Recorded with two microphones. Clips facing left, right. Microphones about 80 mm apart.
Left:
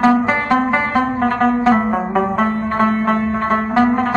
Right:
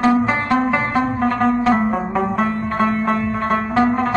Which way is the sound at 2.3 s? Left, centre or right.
Left.